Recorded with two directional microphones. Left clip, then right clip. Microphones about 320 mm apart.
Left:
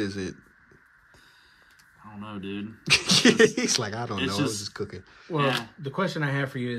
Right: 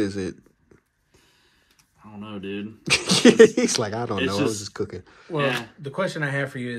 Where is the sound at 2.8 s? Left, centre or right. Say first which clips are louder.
Right 2 dB; centre.